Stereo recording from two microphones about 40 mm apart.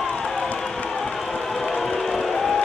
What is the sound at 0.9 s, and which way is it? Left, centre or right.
Music, centre.